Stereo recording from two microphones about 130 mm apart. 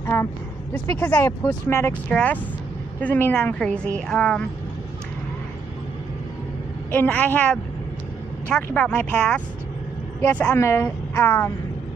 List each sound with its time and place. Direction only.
0.0 s a sound: 20° left (ahead or behind)
0.7 s a woman's voice: 15° left (ahead or behind)
6.9 s a woman's voice: 15° left (ahead or behind)
8.6 s a woman's voice: 15° left (ahead or behind)